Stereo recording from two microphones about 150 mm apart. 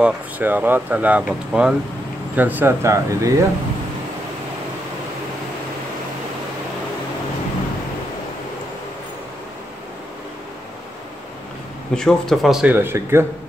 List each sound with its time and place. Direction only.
0.0 s speech: 10° right (ahead or behind)
11.9 s speech: 5° left (ahead or behind)
12.7 s speech: 15° right (ahead or behind)